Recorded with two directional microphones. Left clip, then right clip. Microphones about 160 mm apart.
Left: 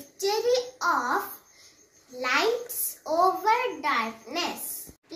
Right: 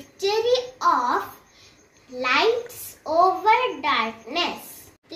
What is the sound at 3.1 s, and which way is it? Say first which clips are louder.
A child's voice: right 5 dB; 5° right (ahead or behind).